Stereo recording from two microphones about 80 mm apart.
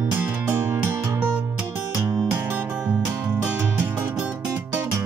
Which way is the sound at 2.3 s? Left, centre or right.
Right.